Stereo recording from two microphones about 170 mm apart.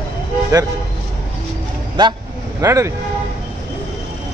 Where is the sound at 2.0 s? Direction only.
25° right (ahead or behind).